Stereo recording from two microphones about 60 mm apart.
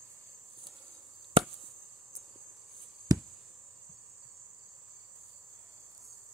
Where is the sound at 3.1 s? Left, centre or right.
Right.